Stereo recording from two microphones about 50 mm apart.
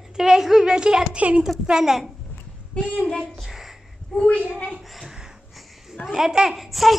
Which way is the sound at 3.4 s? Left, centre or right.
Centre.